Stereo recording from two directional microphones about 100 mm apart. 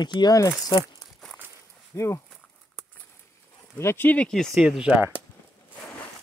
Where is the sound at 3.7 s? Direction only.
25° left (ahead or behind).